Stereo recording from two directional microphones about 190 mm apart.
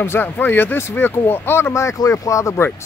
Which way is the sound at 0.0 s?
10° left (ahead or behind).